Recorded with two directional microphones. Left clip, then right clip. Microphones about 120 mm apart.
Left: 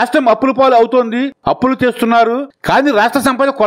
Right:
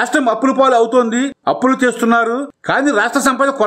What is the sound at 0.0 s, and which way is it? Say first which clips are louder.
Speech: left 3 dB; 40° left (ahead or behind).